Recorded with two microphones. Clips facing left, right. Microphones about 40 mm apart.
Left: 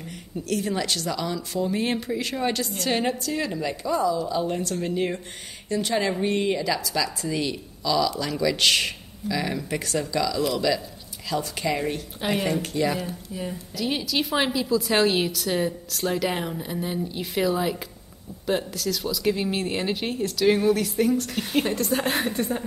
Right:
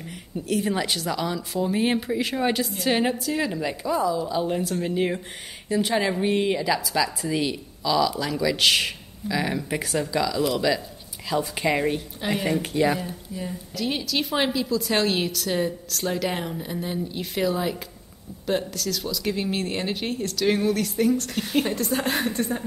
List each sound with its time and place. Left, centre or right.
0.5 s a woman's voice: centre
12.2 s a woman's voice: centre
12.7 s a woman's voice: centre
13.0 s a woman's voice: centre